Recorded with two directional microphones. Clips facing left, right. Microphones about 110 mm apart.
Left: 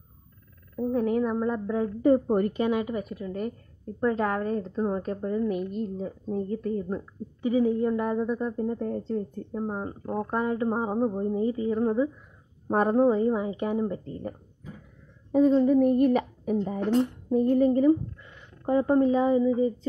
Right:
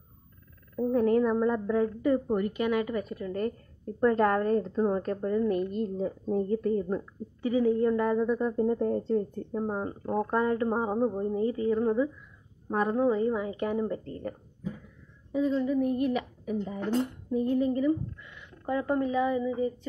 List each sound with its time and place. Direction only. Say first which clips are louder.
0.7 s speech: right 1 dB; 5° left (ahead or behind)
2.0 s speech: left 5 dB; 35° left (ahead or behind)
2.5 s a woman's voice: left 1 dB; 25° left (ahead or behind)
5.7 s a woman's voice: right 1 dB; 5° right (ahead or behind)
7.4 s speech: left 1 dB; 20° left (ahead or behind)
8.9 s speech: right 2 dB; centre (ahead or behind)
11.3 s speech: left 1 dB; 20° left (ahead or behind)
12.6 s speech: left 4 dB; 45° left (ahead or behind)
12.9 s speech: left 3 dB; 30° left (ahead or behind)
15.3 s a woman's voice: left 7 dB; 45° left (ahead or behind); by 19.9 s 30° left (ahead or behind)